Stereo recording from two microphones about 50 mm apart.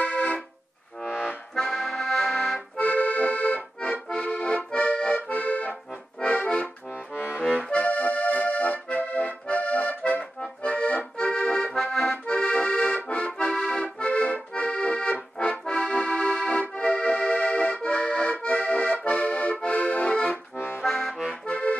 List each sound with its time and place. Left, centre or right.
0.0 s music: left
1.5 s accordion: centre
2.8 s accordion: left
7.2 s accordion: left
7.5 s accordion: left
11.7 s accordion: centre
12.4 s accordion: left
20.5 s accordion: left
20.8 s accordion: centre
21.3 s accordion: left